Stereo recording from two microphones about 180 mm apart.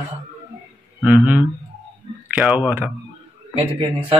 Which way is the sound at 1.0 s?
10° right (ahead or behind).